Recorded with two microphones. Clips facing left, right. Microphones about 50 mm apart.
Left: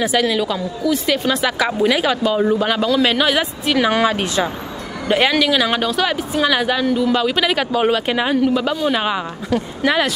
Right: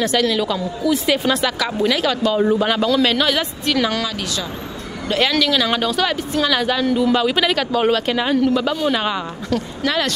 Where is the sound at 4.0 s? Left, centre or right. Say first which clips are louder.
Left 7 dB; left.